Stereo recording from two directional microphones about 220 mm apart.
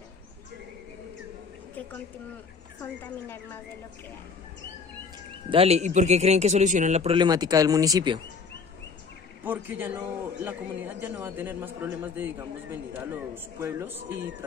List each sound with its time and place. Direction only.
2.8 s a woman's voice: 10° left (ahead or behind)
5.5 s speech: 30° right (ahead or behind)
9.4 s a man's voice: 10° right (ahead or behind)